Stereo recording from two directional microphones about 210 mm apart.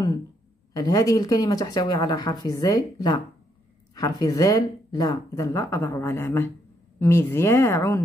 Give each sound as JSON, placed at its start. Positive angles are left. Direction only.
{"t": 0.7, "sound": "speech", "side_deg": 15}